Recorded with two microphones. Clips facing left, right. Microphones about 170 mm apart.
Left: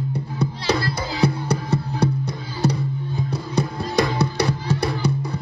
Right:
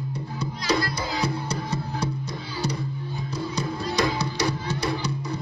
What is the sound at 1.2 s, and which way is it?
Music, 60° left (ahead or behind).